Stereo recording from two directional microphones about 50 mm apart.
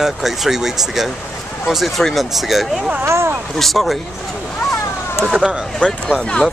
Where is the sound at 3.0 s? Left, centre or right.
Right.